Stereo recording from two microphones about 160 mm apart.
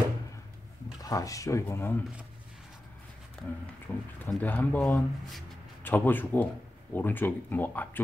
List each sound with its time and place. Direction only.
1.0 s speech: 20° left (ahead or behind)
3.9 s speech: 10° left (ahead or behind)